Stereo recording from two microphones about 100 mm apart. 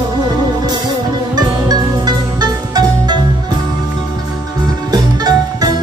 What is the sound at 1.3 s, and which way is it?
Music, 45° right (ahead or behind).